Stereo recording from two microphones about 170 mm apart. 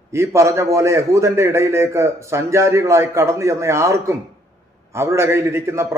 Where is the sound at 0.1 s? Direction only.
15° right (ahead or behind).